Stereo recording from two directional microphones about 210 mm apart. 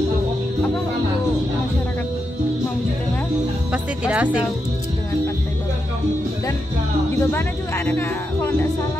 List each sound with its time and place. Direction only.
3.7 s music: 5° right (ahead or behind)
7.2 s speech: 10° left (ahead or behind)